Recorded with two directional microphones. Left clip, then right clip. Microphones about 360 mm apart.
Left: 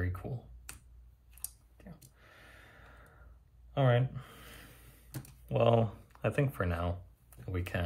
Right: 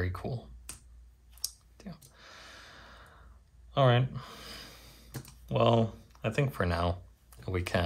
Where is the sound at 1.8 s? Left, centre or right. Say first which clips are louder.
Right 7 dB; centre.